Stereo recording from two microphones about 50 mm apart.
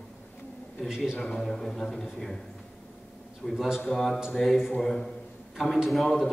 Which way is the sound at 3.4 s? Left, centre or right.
Centre.